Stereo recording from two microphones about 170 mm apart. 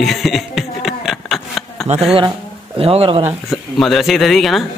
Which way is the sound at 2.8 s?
35° right (ahead or behind).